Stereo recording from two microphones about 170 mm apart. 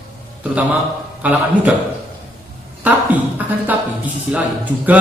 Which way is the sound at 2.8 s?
10° right (ahead or behind).